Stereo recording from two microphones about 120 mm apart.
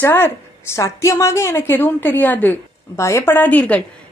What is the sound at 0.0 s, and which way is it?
A woman's voice, 20° left (ahead or behind).